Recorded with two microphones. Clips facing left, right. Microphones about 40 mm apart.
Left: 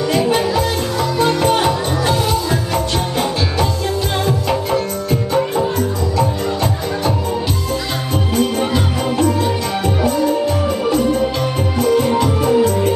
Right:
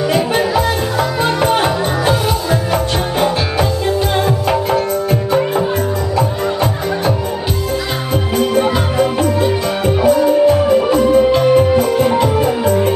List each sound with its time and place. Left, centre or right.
0.1 s music: centre
8.5 s music: centre